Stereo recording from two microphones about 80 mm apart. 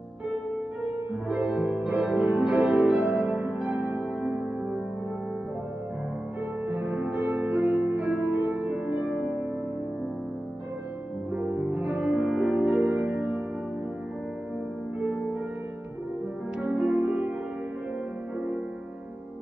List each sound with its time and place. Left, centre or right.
1.3 s music: centre
6.7 s music: centre
11.3 s music: centre
16.6 s music: centre